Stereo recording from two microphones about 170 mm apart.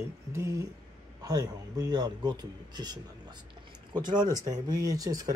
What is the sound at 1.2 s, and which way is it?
A man's voice, 25° right (ahead or behind).